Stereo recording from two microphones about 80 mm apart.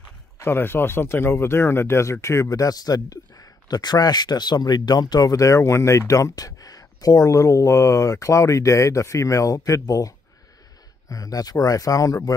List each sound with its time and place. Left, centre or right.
0.4 s speech: left